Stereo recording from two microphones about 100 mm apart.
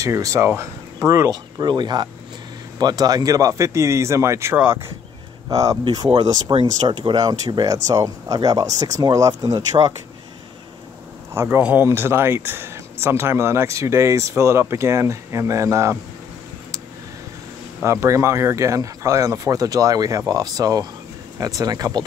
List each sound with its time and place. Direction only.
0.0 s speech: 30° right (ahead or behind)
1.7 s speech: 45° right (ahead or behind)
6.5 s speech: 55° right (ahead or behind)
7.2 s speech: 40° right (ahead or behind)
11.3 s speech: 25° right (ahead or behind)
17.8 s speech: 30° right (ahead or behind)